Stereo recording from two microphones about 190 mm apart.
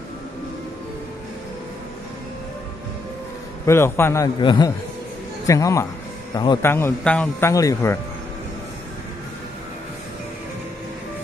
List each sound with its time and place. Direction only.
3.6 s speech: 15° left (ahead or behind)